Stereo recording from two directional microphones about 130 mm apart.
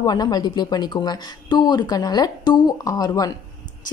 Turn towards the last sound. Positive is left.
turn(degrees=30)  # may be behind; listen again after turning